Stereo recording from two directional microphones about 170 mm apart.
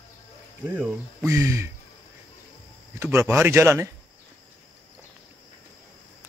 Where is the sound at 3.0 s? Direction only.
15° right (ahead or behind).